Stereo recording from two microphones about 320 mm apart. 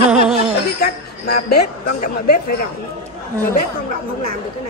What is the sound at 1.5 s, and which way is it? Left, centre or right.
Speech, left.